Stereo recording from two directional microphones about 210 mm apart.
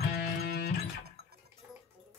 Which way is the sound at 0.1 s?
45° left (ahead or behind).